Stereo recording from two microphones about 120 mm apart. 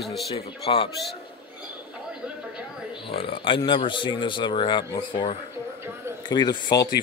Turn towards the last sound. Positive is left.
turn(degrees=35)  # may be behind; listen again after turning